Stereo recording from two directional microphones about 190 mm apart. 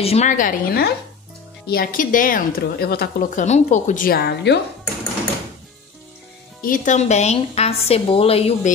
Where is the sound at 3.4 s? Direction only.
40° left (ahead or behind); by 4.6 s 60° left (ahead or behind).